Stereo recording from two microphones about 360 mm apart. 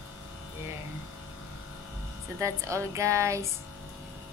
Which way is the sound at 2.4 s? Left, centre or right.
Centre.